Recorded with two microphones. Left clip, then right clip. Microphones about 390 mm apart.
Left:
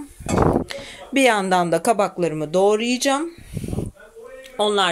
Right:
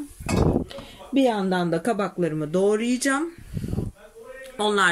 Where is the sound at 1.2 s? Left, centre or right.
Left.